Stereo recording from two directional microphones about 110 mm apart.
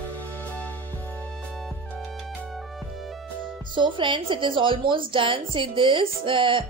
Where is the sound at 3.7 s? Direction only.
45° right (ahead or behind).